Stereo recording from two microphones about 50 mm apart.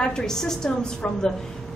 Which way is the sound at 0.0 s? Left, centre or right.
Centre.